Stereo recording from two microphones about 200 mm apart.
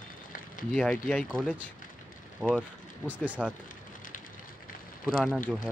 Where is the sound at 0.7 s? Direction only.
5° left (ahead or behind).